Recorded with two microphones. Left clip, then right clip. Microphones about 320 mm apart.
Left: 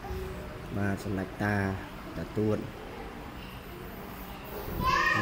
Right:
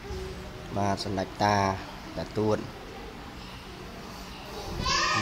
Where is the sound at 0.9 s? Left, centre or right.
Right.